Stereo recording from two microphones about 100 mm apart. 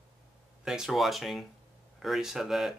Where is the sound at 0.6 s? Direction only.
5° right (ahead or behind).